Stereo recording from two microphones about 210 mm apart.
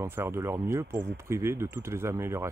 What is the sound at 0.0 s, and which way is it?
Speech, 10° right (ahead or behind).